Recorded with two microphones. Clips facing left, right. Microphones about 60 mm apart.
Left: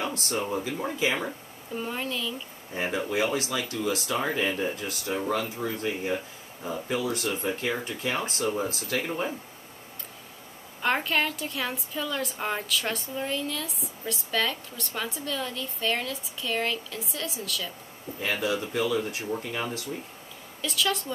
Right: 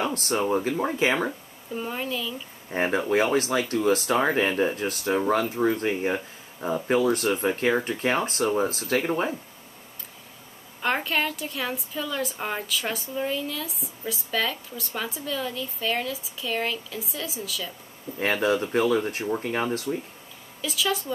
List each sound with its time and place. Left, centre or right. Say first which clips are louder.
0.0 s speech: right 4 dB; right
1.7 s a woman's voice: right 2 dB; centre
2.7 s speech: right 5 dB; right
10.8 s a woman's voice: even; centre
18.2 s speech: right 5 dB; right
20.6 s a woman's voice: right 1 dB; centre